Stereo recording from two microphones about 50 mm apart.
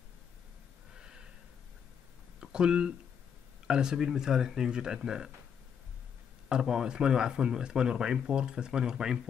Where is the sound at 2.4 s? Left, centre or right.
Centre.